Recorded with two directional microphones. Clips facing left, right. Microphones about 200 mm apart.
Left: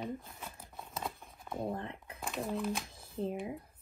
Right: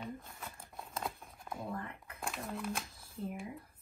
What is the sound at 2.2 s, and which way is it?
Speech, centre (ahead or behind).